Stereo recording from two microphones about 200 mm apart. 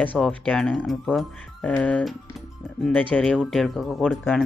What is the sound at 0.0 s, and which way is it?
Speech, 5° left (ahead or behind).